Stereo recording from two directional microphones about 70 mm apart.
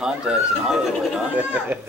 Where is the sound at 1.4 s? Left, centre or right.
Right.